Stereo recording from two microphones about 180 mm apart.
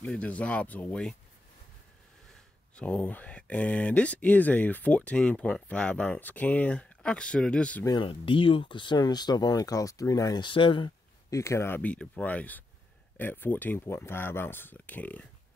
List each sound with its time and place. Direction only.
0.0 s speech: 5° left (ahead or behind)
2.7 s speech: 5° left (ahead or behind)
7.8 s speech: 25° left (ahead or behind); by 15.2 s 10° left (ahead or behind)